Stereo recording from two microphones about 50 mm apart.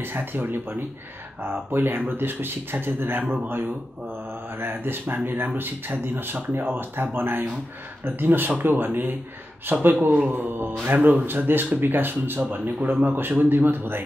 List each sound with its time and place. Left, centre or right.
0.0 s speech: right
4.6 s speech: right